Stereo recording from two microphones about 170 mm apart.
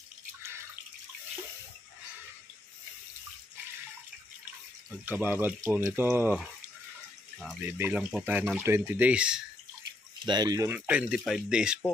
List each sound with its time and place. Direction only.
5.0 s speech: 10° right (ahead or behind)
7.6 s speech: 15° right (ahead or behind)
10.2 s speech: 25° right (ahead or behind)
10.7 s speech: 10° right (ahead or behind)